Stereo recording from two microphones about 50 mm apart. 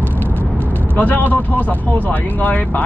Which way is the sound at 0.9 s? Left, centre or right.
Left.